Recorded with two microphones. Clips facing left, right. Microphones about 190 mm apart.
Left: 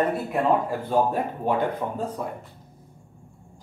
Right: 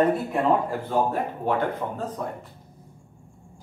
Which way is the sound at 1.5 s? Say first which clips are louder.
Left 1 dB; 15° left (ahead or behind).